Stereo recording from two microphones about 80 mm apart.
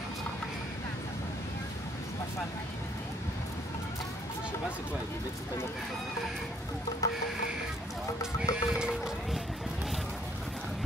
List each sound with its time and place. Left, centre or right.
7.0 s music: left
8.4 s speech: centre